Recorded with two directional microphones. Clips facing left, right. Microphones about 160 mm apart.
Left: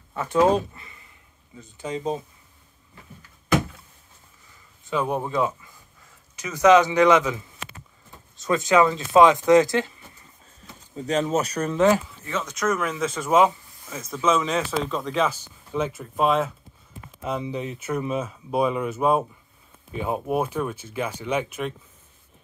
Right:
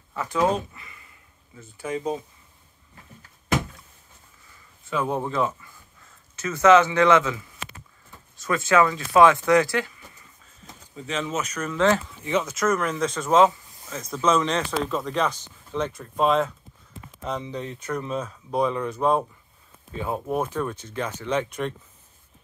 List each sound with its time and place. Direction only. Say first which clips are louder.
0.1 s speech: left 4 dB; 30° left (ahead or behind)
4.8 s speech: left 1 dB; 20° left (ahead or behind)
11.0 s speech: left 5 dB; 40° left (ahead or behind)
11.7 s speech: left 2 dB; 15° left (ahead or behind)
12.4 s speech: right 1 dB; centre (ahead or behind)